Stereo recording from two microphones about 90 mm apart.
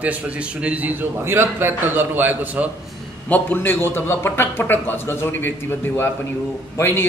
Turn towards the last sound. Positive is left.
turn(degrees=25)  # may be behind; listen again after turning